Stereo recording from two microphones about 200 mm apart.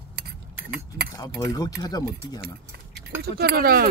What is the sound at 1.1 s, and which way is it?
Speech, 15° left (ahead or behind).